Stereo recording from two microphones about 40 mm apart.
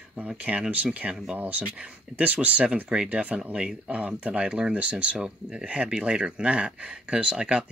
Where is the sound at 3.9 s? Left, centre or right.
Right.